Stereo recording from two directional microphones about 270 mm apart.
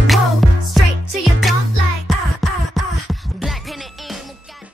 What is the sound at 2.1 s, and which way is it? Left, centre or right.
Music, centre.